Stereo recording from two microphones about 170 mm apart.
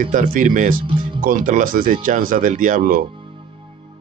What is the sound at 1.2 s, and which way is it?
Speech, 50° right (ahead or behind).